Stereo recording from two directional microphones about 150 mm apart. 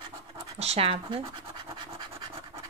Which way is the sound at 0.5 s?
45° right (ahead or behind).